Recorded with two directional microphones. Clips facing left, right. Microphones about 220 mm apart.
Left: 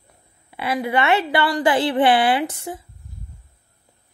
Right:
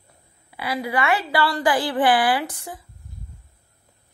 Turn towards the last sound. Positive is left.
turn(degrees=25)  # may be behind; listen again after turning